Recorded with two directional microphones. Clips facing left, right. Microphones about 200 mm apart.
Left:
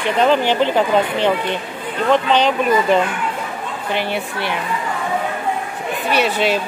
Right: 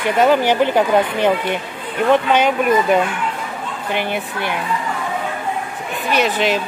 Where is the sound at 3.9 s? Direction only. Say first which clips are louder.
Even; 50° right (ahead or behind).